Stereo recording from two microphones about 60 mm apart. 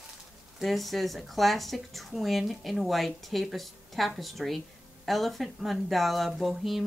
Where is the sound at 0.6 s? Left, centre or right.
Centre.